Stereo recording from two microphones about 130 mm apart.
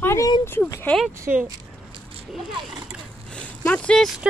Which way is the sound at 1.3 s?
15° right (ahead or behind).